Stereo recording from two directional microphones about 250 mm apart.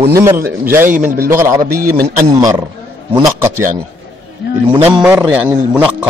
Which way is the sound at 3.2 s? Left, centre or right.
Centre.